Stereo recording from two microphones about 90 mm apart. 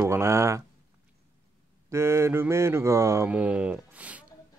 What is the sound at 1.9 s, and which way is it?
Speech, 30° right (ahead or behind).